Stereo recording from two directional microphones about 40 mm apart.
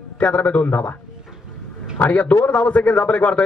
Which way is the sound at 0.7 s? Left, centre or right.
Left.